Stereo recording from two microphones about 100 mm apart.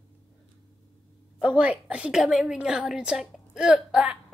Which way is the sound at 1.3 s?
10° right (ahead or behind).